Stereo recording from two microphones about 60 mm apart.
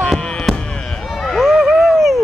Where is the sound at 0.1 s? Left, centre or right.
Centre.